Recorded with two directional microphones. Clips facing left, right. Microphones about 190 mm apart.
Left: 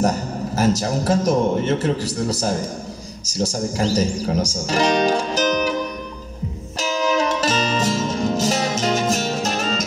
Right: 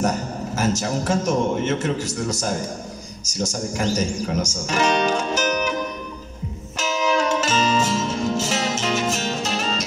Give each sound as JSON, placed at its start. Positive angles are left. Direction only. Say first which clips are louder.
{"t": 0.7, "sound": "a man's voice", "louder": "left 3 dB", "side_deg": 35}
{"t": 6.8, "sound": "music", "louder": "left 1 dB", "side_deg": 35}